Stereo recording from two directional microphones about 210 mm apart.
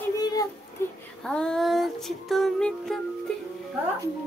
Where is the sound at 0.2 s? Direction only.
15° left (ahead or behind).